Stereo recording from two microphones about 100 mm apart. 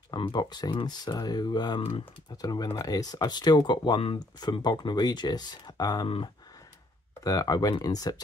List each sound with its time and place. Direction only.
0.3 s speech: 45° left (ahead or behind)
6.0 s speech: 65° left (ahead or behind)
7.2 s speech: 40° left (ahead or behind)